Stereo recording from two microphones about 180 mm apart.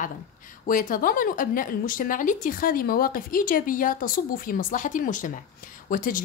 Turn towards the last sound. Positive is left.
turn(degrees=50)  # may be behind; listen again after turning